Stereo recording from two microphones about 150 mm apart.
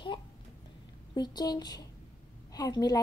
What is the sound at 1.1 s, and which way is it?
A woman's voice, 25° left (ahead or behind).